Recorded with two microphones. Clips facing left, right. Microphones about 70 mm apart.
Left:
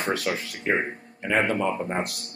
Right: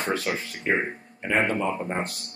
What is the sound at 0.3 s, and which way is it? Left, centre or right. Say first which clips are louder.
Speech: even; left.